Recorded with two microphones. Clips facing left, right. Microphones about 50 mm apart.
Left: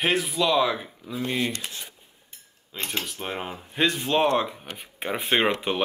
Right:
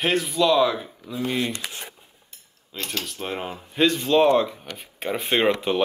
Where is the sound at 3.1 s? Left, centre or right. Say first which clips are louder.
Right 2 dB; centre.